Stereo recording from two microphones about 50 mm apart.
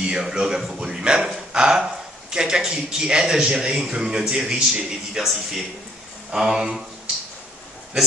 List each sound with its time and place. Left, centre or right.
0.2 s speech: centre